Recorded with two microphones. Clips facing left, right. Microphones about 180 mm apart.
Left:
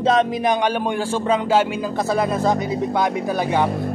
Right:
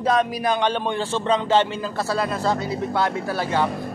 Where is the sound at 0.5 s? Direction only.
10° left (ahead or behind).